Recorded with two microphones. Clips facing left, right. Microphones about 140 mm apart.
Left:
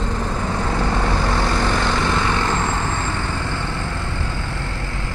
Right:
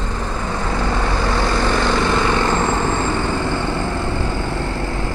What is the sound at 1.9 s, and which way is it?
Vehicle, 10° right (ahead or behind).